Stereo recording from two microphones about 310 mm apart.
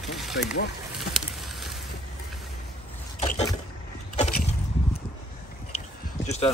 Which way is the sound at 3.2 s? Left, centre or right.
Centre.